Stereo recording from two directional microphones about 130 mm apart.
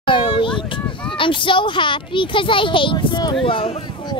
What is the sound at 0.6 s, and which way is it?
A child's voice, 40° left (ahead or behind).